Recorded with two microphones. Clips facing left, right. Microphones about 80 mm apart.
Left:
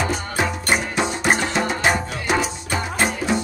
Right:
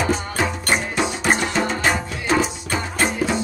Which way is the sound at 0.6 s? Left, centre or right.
Centre.